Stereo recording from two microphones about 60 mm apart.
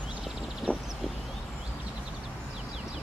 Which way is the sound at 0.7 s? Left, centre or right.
Left.